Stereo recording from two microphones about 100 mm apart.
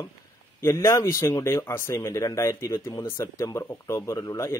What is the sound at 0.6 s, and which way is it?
Speech, 25° left (ahead or behind).